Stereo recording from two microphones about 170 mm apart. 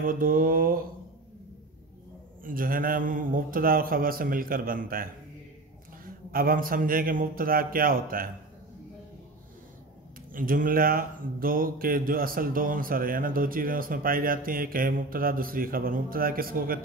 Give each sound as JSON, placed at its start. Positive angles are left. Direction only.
{"t": 0.0, "sound": "speech", "side_deg": -55}
{"t": 2.4, "sound": "speech", "side_deg": -55}
{"t": 10.3, "sound": "speech", "side_deg": -55}